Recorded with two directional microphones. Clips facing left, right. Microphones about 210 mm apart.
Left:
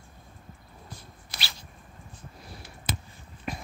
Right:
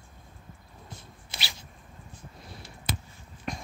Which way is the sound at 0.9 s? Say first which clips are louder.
Even; 20° right (ahead or behind).